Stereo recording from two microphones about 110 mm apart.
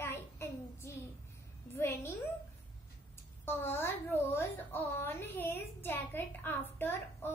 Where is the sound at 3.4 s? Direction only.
20° left (ahead or behind).